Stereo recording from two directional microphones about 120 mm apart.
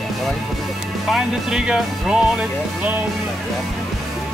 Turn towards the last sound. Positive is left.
turn(degrees=-10)  # may be behind; listen again after turning